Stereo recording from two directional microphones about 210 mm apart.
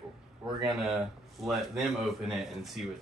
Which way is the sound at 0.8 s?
Centre (ahead or behind).